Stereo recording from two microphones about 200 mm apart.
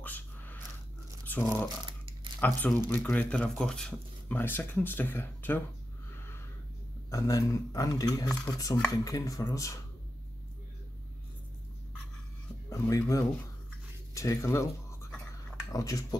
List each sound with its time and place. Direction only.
0.0 s a sound: 10° left (ahead or behind)
1.2 s speech: 10° left (ahead or behind)
7.1 s speech: 15° left (ahead or behind)
8.3 s speech: 5° left (ahead or behind)
8.9 s speech: 15° left (ahead or behind)
12.6 s speech: 15° left (ahead or behind)